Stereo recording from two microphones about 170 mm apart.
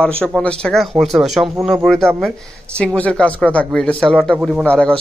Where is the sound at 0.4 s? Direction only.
5° left (ahead or behind).